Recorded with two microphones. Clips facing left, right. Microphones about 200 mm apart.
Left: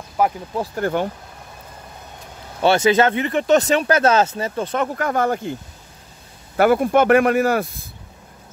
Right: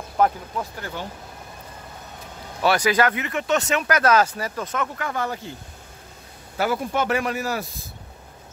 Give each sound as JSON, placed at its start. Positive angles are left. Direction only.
{"t": 0.2, "sound": "speech", "side_deg": 5}
{"t": 0.7, "sound": "speech", "side_deg": 50}
{"t": 2.6, "sound": "speech", "side_deg": 25}
{"t": 4.9, "sound": "speech", "side_deg": 50}
{"t": 6.5, "sound": "speech", "side_deg": 60}